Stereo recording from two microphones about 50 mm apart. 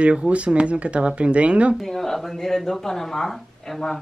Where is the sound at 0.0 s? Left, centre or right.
Right.